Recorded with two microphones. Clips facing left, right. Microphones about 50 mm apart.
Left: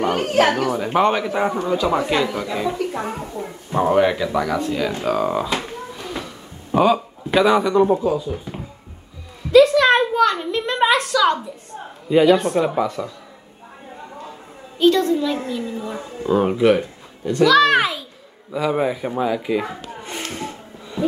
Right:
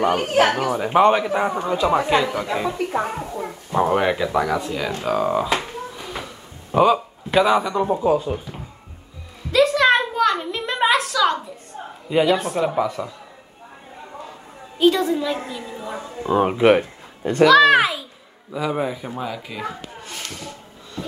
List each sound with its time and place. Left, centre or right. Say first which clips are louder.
0.0 s speech: even; centre
3.7 s speech: left 2 dB; centre
6.0 s a sound: left 2 dB; centre
7.3 s speech: left 2 dB; centre
9.5 s a sound: left 4 dB; centre
12.1 s speech: left 4 dB; centre
12.8 s speech: left 1 dB; centre
14.8 s speech: left 2 dB; centre
16.6 s speech: right 1 dB; right
17.5 s a child's voice: right 2 dB; centre; by 20.5 s left